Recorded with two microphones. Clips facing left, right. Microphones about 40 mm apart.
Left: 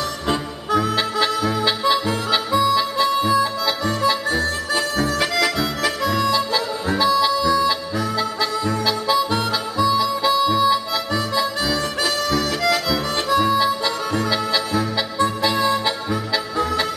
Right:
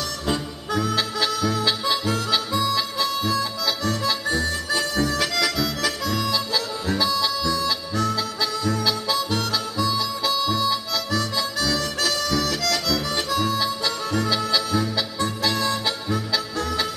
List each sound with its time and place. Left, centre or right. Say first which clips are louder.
0.3 s music: left 5 dB; centre